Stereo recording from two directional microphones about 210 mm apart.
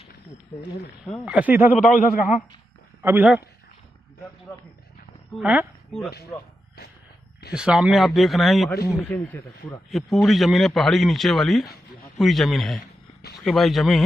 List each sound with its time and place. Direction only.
1.0 s speech: centre (ahead or behind)
1.8 s a man's voice: 40° left (ahead or behind)
3.0 s speech: 10° right (ahead or behind)
5.4 s speech: 5° right (ahead or behind)
7.5 s speech: 5° right (ahead or behind)